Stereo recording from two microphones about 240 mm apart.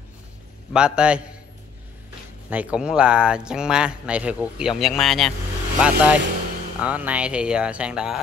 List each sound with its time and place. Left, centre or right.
0.7 s speech: centre
2.5 s speech: centre